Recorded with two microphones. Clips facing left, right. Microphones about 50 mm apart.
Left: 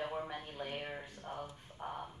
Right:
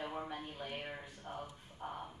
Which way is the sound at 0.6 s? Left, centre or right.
Centre.